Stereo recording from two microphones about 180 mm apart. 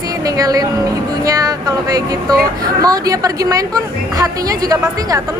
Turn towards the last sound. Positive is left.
turn(degrees=-20)  # may be behind; listen again after turning